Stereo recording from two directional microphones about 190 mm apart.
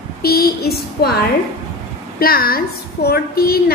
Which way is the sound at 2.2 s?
50° left (ahead or behind).